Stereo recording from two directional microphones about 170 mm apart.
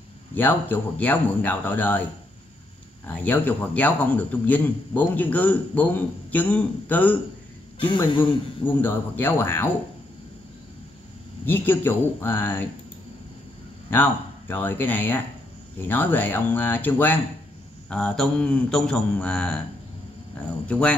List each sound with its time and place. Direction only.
0.3 s a man's voice: 10° left (ahead or behind)
3.3 s a man's voice: 10° left (ahead or behind)
8.1 s speech: 30° left (ahead or behind)
8.6 s a man's voice: 10° left (ahead or behind)
11.4 s a man's voice: 10° left (ahead or behind)
13.8 s a man's voice: 10° left (ahead or behind)
20.6 s a man's voice: 5° left (ahead or behind)